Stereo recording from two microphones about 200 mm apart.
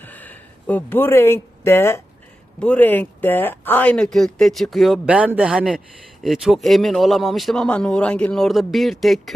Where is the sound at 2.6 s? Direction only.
5° left (ahead or behind).